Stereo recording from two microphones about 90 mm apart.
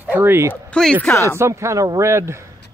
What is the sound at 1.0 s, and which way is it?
Speech, 25° left (ahead or behind).